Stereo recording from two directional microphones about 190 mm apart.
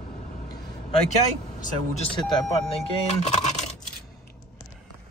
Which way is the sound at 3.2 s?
35° left (ahead or behind).